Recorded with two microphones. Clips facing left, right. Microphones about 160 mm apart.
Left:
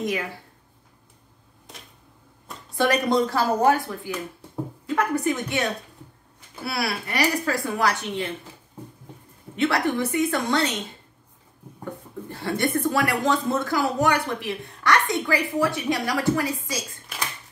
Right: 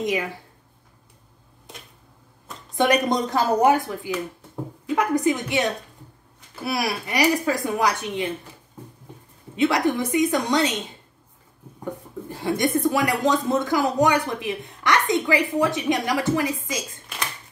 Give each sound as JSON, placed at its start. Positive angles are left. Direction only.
{"t": 2.7, "sound": "speech", "side_deg": -20}
{"t": 9.6, "sound": "speech", "side_deg": -15}
{"t": 11.8, "sound": "speech", "side_deg": -15}